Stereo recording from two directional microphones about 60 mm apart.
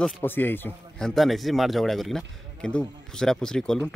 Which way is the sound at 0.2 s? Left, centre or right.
Left.